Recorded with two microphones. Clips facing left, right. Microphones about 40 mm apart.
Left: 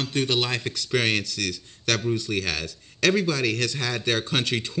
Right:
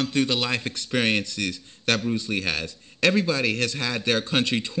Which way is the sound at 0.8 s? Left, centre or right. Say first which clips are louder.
Even; right.